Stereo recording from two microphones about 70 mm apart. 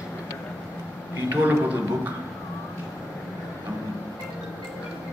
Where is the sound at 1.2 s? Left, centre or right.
Right.